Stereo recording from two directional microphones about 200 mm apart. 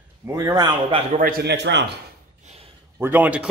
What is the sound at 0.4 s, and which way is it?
Speech, 20° right (ahead or behind).